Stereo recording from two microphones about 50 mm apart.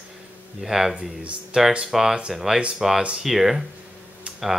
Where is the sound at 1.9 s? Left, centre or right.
Centre.